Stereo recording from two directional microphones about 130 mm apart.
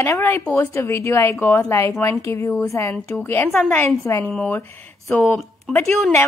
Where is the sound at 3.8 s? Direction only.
20° left (ahead or behind).